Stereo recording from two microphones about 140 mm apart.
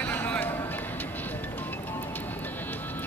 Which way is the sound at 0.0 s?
10° left (ahead or behind).